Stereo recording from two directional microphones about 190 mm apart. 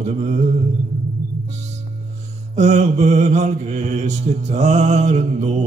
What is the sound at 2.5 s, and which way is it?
Mantra, 35° right (ahead or behind).